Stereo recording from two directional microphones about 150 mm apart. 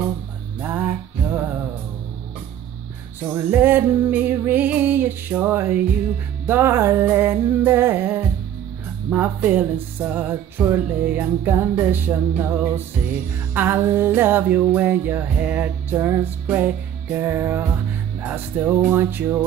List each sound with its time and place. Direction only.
0.6 s music: 10° right (ahead or behind)
3.3 s music: 15° right (ahead or behind)